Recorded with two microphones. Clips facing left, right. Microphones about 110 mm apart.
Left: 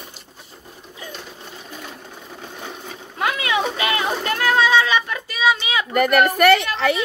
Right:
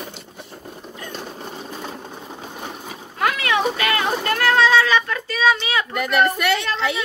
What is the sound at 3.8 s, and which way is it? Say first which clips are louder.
Speech: right 1 dB; 20° left (ahead or behind).